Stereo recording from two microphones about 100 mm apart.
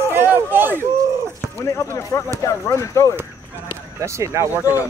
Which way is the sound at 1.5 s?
30° left (ahead or behind).